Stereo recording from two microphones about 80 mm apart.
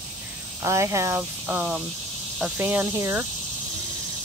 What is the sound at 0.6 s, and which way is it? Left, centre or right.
Speech, right.